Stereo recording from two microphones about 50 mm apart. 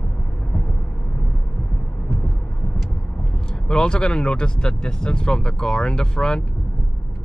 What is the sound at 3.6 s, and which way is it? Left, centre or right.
Speech, centre.